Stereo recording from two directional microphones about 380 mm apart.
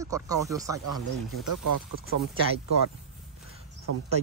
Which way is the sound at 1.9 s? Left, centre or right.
Right.